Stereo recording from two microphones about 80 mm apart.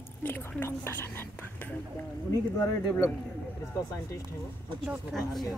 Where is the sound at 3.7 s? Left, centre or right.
Left.